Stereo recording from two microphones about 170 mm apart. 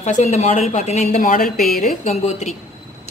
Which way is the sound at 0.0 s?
40° left (ahead or behind).